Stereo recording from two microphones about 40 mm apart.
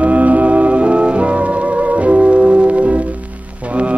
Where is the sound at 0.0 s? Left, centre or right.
Right.